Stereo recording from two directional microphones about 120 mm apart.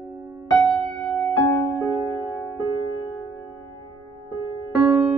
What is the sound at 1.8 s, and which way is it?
Music, 35° right (ahead or behind).